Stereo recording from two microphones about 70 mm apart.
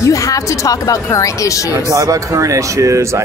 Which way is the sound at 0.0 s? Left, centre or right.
Left.